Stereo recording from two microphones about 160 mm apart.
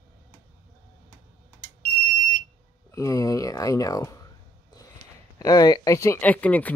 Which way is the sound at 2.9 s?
20° left (ahead or behind).